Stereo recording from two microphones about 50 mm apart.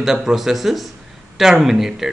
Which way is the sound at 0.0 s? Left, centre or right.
Centre.